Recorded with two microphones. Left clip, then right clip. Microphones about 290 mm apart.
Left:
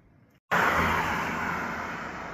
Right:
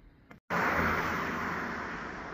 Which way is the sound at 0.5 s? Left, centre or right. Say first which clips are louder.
Left 5 dB; left.